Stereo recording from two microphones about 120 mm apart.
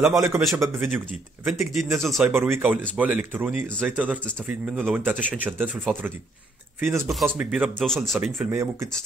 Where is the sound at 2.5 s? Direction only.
15° right (ahead or behind).